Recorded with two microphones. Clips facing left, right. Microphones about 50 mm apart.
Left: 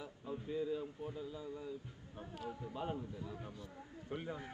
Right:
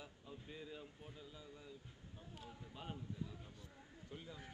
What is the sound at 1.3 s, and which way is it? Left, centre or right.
Speech, left.